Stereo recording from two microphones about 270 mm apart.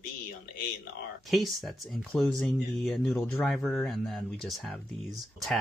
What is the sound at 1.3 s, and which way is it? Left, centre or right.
Speech, centre.